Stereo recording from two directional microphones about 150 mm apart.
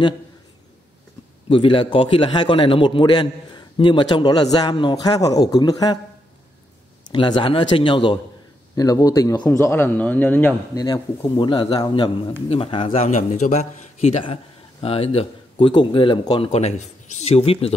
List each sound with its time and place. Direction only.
1.5 s a man's voice: 35° left (ahead or behind)
7.1 s a man's voice: 30° left (ahead or behind); by 10.5 s 10° left (ahead or behind)
10.7 s a man's voice: 30° left (ahead or behind)